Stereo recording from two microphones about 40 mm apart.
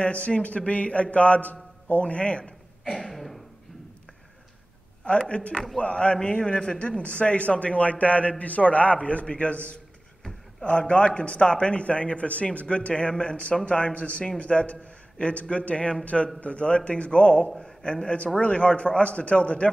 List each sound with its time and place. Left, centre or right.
0.0 s a man's voice: left
2.8 s a sound: centre
5.0 s a man's voice: left
7.0 s a man's voice: left
10.8 s a man's voice: left